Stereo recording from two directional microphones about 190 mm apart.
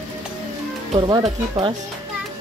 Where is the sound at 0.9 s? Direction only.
25° right (ahead or behind).